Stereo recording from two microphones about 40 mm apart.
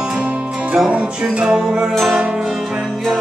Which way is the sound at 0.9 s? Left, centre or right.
Right.